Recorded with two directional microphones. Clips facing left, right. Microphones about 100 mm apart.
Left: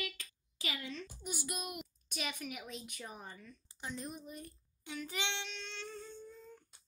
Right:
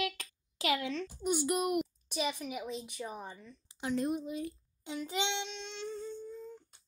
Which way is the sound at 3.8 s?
85° right.